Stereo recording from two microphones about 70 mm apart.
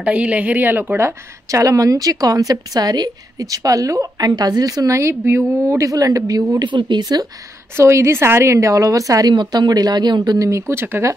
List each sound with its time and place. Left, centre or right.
0.0 s a woman's voice: centre; by 5.4 s right
5.7 s a woman's voice: right
6.6 s speech: right
7.7 s a woman's voice: right
9.3 s speech: right
10.7 s speech: right